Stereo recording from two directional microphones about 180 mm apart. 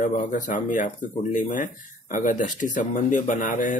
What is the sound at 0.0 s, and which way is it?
Speech, 45° left (ahead or behind).